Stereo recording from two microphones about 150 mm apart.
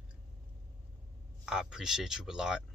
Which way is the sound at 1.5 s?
5° right (ahead or behind).